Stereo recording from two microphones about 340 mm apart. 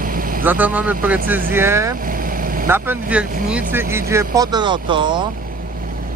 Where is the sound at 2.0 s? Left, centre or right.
Right.